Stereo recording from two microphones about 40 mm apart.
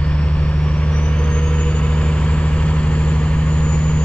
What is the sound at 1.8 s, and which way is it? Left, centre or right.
Vehicle, left.